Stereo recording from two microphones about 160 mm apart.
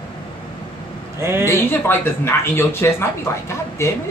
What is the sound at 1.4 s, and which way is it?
Speech, 15° left (ahead or behind).